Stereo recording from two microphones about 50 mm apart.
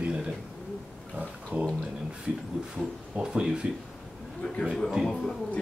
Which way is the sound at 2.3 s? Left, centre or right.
Centre.